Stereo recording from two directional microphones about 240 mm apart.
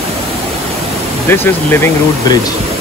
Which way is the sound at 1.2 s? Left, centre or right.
Centre.